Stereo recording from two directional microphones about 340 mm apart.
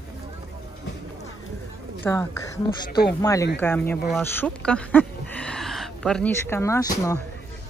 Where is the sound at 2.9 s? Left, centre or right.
Left.